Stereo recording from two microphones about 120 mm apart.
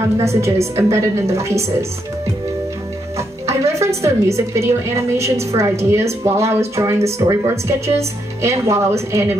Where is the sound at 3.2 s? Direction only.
25° right (ahead or behind).